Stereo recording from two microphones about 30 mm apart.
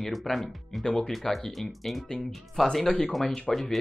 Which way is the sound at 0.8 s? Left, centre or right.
Centre.